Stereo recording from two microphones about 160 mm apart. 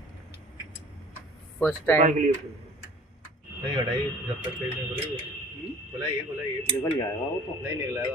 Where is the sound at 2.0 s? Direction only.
50° right (ahead or behind).